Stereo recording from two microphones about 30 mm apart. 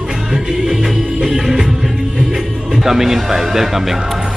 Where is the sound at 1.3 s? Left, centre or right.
Centre.